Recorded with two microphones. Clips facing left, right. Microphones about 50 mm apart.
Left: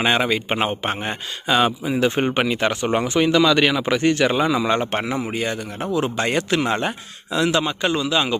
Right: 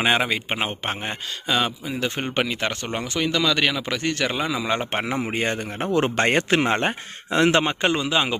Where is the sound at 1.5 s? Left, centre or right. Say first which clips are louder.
Left 5 dB; centre.